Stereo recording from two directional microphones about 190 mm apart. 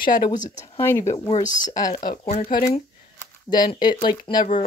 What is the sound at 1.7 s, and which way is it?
Speech, 20° left (ahead or behind).